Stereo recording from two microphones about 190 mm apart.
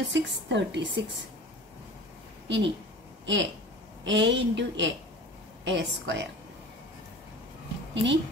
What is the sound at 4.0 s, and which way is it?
A woman's voice, 70° right (ahead or behind).